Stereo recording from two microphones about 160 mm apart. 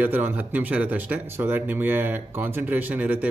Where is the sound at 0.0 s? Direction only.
10° right (ahead or behind).